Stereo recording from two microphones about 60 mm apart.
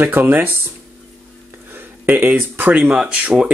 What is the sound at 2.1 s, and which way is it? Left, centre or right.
Speech, right.